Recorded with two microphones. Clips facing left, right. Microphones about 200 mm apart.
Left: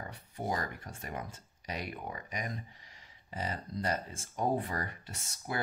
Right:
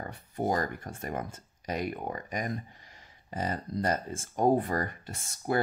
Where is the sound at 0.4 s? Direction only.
45° right (ahead or behind).